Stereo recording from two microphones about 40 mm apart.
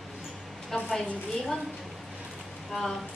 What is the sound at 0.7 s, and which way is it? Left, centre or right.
Speech, centre.